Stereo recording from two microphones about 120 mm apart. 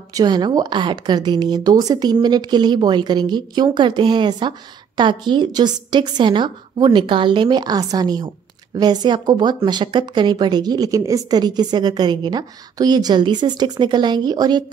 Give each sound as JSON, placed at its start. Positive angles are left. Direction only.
{"t": 0.1, "sound": "a woman's voice", "side_deg": -35}